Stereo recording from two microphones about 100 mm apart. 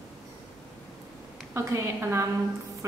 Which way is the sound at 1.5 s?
30° right (ahead or behind).